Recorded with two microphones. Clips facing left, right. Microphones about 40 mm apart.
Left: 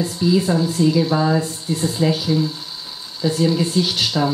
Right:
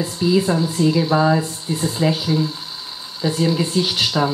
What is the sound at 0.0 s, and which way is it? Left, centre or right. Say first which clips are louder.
Speech: even; centre.